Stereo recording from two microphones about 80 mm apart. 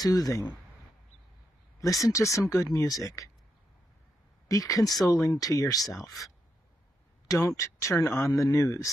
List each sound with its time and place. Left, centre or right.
0.0 s speech: left
2.0 s speech: left
4.5 s speech: left
7.4 s speech: left
8.3 s speech: left
8.5 s speech: left